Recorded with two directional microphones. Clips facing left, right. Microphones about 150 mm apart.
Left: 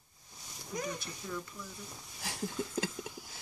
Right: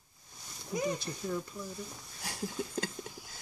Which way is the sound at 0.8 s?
30° right (ahead or behind).